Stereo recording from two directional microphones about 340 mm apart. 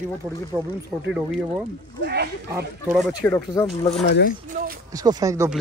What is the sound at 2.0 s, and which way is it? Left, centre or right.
Speech, right.